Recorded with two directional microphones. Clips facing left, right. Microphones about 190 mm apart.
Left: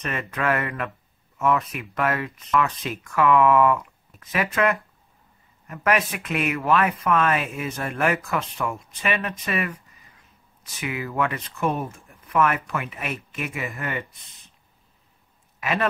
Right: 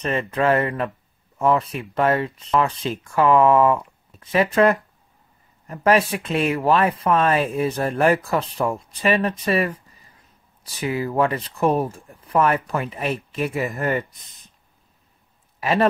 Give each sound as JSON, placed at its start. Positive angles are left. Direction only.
{"t": 0.0, "sound": "speech", "side_deg": -30}
{"t": 15.6, "sound": "a man's voice", "side_deg": -35}